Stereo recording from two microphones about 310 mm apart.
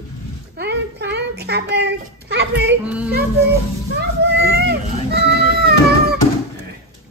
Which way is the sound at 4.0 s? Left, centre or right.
Right.